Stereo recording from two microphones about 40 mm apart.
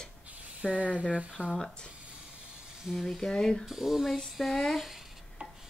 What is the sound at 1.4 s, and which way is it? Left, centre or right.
Speech, right.